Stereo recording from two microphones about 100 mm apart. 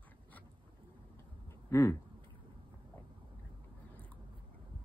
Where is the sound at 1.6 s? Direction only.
30° left (ahead or behind).